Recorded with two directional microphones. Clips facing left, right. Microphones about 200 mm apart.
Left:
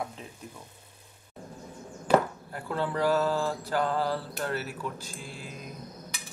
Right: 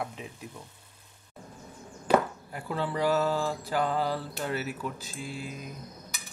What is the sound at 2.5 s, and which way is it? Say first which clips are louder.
Speech: left 2 dB; 10° right (ahead or behind).